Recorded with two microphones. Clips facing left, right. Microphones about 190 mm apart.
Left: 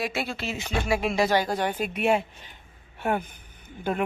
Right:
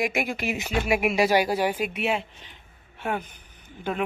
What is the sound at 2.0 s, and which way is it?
Speech, 50° left (ahead or behind).